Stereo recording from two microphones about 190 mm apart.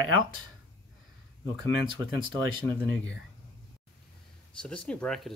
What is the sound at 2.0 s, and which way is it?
Speech, 20° right (ahead or behind).